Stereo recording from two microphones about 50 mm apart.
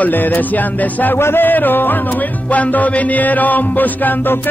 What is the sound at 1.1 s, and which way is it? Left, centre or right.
Music, left.